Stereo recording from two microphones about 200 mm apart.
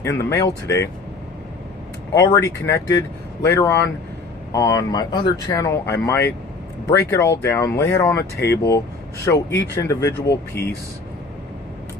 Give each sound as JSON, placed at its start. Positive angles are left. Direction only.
{"t": 0.2, "sound": "speech", "side_deg": 15}
{"t": 2.1, "sound": "speech", "side_deg": 15}